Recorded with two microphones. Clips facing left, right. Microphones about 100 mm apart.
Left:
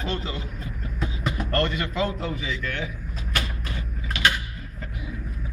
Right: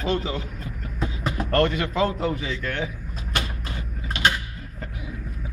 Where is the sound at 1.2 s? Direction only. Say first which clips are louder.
Right 3 dB; 35° right (ahead or behind).